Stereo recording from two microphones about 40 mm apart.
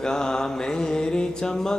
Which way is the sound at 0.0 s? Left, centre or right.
Centre.